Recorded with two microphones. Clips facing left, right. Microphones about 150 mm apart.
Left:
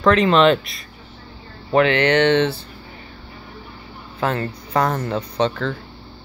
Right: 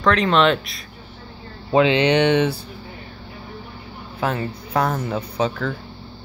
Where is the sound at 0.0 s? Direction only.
Centre (ahead or behind).